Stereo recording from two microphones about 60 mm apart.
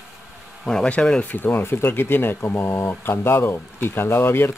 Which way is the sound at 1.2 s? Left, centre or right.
Left.